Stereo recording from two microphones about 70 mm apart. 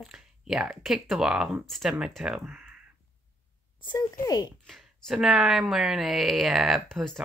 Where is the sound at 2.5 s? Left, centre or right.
Right.